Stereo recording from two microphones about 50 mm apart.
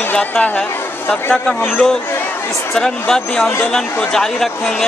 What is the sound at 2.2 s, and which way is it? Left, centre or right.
Chatter, left.